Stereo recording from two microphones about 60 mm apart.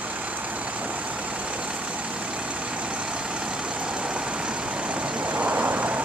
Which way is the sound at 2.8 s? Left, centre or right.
Centre.